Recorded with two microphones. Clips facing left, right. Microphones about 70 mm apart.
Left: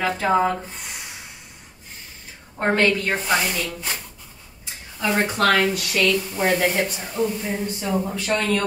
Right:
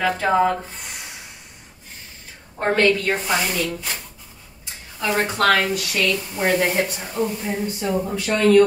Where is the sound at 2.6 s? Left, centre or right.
Left.